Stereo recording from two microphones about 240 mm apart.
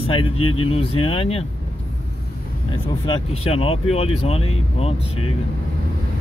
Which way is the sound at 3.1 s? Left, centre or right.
Left.